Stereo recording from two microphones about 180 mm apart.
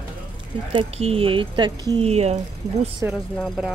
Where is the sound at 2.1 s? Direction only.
35° right (ahead or behind).